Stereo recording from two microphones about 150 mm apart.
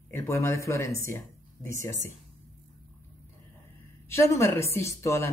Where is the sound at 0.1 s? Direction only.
20° left (ahead or behind).